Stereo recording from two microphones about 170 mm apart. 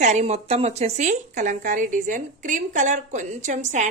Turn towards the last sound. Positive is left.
turn(degrees=-45)  # may be behind; listen again after turning